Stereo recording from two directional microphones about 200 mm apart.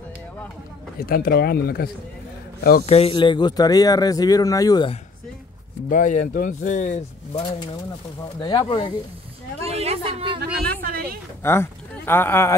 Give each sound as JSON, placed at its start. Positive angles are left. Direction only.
{"t": 0.9, "sound": "speech", "side_deg": 50}
{"t": 2.9, "sound": "speech", "side_deg": 30}
{"t": 5.9, "sound": "speech", "side_deg": 40}
{"t": 8.4, "sound": "speech", "side_deg": 20}
{"t": 9.6, "sound": "a sound", "side_deg": -30}
{"t": 10.4, "sound": "a sound", "side_deg": -50}
{"t": 11.4, "sound": "speech", "side_deg": 10}